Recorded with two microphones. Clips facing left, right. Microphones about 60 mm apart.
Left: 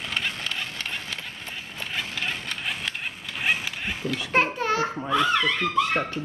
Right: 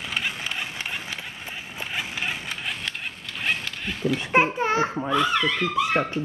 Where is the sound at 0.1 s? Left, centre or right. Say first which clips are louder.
Right 1 dB; centre.